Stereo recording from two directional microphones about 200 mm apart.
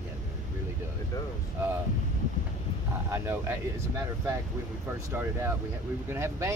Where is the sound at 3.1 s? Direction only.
15° right (ahead or behind).